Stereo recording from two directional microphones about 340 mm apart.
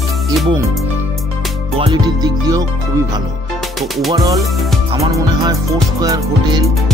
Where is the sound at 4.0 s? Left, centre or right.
Centre.